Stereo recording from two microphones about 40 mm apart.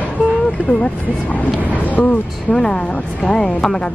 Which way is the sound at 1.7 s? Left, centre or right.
Left.